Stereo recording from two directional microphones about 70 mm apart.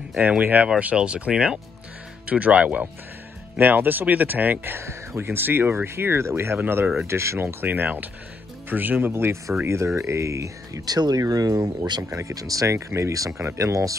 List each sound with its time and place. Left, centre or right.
0.4 s speech: right
4.7 s speech: right
7.6 s speech: right
10.9 s speech: right
12.0 s speech: right